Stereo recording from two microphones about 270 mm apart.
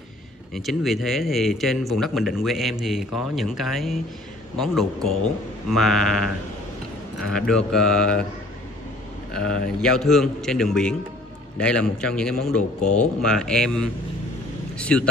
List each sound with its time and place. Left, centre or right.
0.6 s speech: centre
9.3 s speech: centre